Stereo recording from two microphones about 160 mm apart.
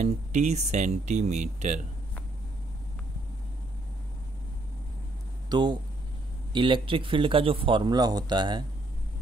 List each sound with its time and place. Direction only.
0.0 s speech: 45° right (ahead or behind)
5.5 s speech: 25° right (ahead or behind)